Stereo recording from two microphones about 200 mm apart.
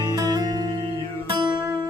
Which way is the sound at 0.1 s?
20° right (ahead or behind).